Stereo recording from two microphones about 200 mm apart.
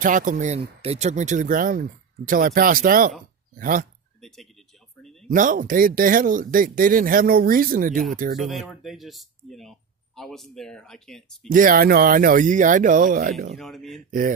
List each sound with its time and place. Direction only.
0.0 s speech: 40° right (ahead or behind)
4.2 s a sound: centre (ahead or behind)
5.3 s speech: 40° right (ahead or behind)
8.4 s speech: centre (ahead or behind)
11.4 s speech: 45° right (ahead or behind)
13.6 s speech: centre (ahead or behind)